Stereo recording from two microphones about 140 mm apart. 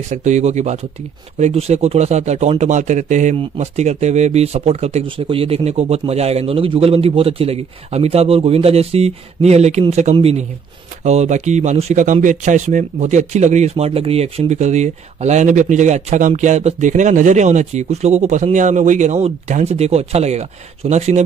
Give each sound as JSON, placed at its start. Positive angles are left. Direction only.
{"t": 0.1, "sound": "speech", "side_deg": -60}
{"t": 11.1, "sound": "speech", "side_deg": -55}